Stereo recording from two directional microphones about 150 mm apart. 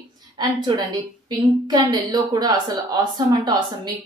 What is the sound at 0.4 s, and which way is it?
A woman's voice, 30° right (ahead or behind).